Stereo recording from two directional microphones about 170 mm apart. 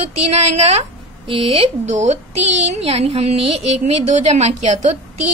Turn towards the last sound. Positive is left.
turn(degrees=-40)  # may be behind; listen again after turning